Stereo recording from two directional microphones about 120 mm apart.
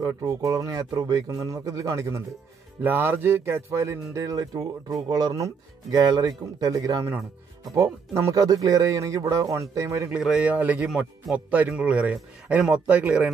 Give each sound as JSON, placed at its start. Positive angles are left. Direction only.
{"t": 0.0, "sound": "speech", "side_deg": -30}
{"t": 10.1, "sound": "speech", "side_deg": -5}
{"t": 10.9, "sound": "speech", "side_deg": 0}
{"t": 11.3, "sound": "speech", "side_deg": -15}